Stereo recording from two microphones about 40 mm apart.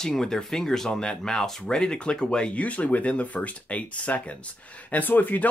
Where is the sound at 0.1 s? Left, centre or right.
Centre; by 4.2 s left.